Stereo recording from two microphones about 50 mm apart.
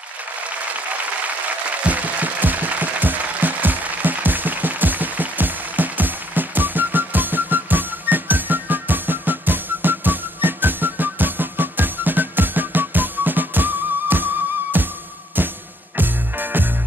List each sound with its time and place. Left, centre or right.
1.8 s music: right